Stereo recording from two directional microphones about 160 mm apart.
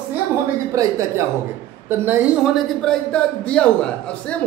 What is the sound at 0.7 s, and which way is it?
A man's voice, 20° right (ahead or behind).